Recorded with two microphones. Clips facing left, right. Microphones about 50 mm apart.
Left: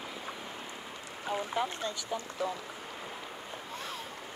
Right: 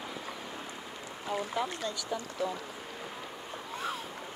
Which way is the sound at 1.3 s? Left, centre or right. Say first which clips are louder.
Even; left.